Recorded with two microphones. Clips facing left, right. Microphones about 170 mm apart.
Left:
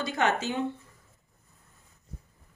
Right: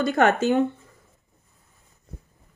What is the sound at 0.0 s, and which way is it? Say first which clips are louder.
Speech: right 8 dB; 55° right (ahead or behind).